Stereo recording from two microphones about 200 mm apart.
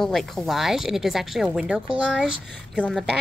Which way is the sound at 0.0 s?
Centre (ahead or behind).